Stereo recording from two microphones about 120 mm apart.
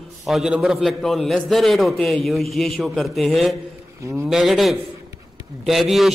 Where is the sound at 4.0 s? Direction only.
25° right (ahead or behind).